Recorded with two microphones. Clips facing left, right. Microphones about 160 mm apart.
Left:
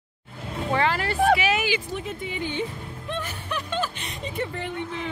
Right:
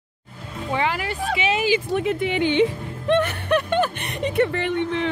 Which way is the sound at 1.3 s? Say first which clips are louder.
Even; 25° right (ahead or behind).